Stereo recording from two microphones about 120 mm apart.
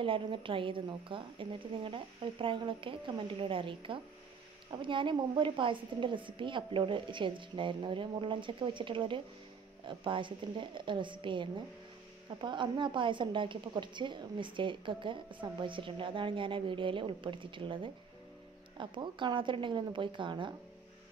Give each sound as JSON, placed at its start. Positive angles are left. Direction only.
{"t": 0.0, "sound": "a woman's voice", "side_deg": -45}